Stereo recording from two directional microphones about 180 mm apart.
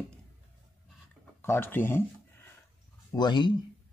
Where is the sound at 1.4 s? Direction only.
15° left (ahead or behind).